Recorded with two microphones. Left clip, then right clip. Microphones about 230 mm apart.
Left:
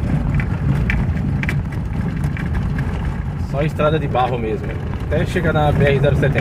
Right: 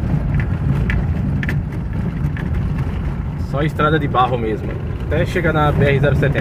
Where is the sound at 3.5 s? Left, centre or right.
Right.